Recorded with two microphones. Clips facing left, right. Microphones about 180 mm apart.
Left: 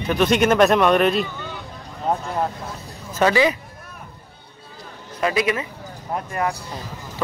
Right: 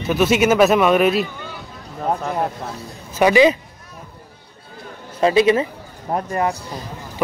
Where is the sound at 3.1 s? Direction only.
15° right (ahead or behind).